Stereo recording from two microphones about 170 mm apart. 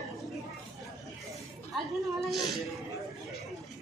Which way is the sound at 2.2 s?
Centre (ahead or behind).